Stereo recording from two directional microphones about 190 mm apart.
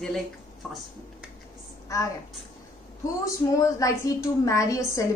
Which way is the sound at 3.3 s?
15° left (ahead or behind).